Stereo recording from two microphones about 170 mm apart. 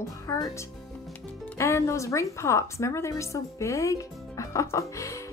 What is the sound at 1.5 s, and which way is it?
A woman's voice, 15° left (ahead or behind).